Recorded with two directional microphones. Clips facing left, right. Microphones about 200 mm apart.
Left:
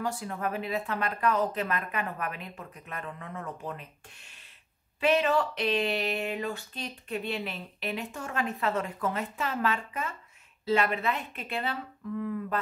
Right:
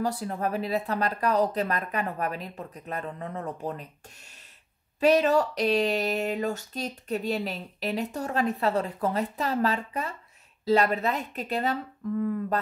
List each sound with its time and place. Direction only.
0.0 s speech: 35° right (ahead or behind)
5.0 s speech: 40° right (ahead or behind)